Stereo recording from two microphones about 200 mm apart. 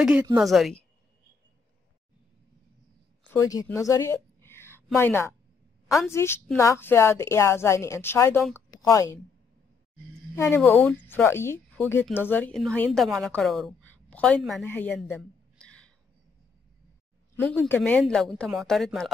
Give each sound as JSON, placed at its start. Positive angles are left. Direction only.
{"t": 0.4, "sound": "speech", "side_deg": 0}
{"t": 3.3, "sound": "speech", "side_deg": 15}
{"t": 3.6, "sound": "a sound", "side_deg": 15}
{"t": 4.9, "sound": "a woman's voice", "side_deg": 10}
{"t": 10.3, "sound": "a woman's voice", "side_deg": 10}
{"t": 17.4, "sound": "speech", "side_deg": 10}